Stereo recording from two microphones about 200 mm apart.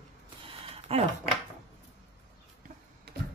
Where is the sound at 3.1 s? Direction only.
55° right (ahead or behind).